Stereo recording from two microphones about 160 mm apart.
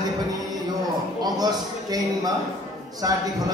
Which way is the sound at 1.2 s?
25° right (ahead or behind).